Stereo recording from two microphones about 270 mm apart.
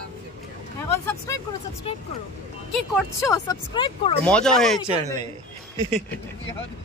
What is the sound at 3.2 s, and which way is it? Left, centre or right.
Speech, centre.